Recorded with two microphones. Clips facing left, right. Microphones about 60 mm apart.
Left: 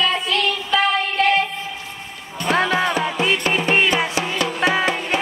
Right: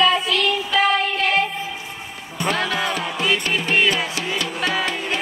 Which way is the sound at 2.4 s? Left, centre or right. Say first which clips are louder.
Left 4 dB; left.